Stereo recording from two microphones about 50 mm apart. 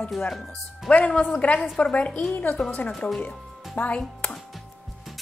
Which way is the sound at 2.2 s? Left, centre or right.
Left.